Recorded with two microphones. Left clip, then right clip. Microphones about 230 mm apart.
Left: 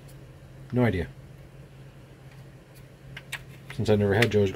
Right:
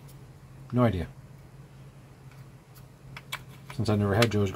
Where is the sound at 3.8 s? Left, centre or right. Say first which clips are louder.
Left 3 dB; right.